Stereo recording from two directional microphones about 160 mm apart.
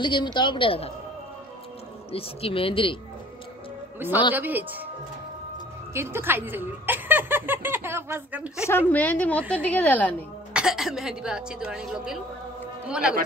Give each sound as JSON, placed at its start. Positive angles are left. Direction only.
{"t": 0.0, "sound": "a woman's voice", "side_deg": 30}
{"t": 2.1, "sound": "a woman's voice", "side_deg": 35}
{"t": 4.3, "sound": "speech", "side_deg": -10}
{"t": 5.9, "sound": "speech", "side_deg": -15}
{"t": 8.6, "sound": "a woman's voice", "side_deg": 10}
{"t": 10.5, "sound": "a woman's voice", "side_deg": -5}